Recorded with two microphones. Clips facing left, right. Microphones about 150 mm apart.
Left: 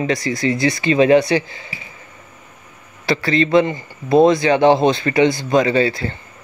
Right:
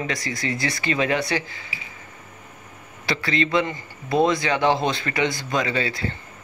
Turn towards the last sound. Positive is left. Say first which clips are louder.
# left 8 dB
turn(degrees=30)  # may be behind; listen again after turning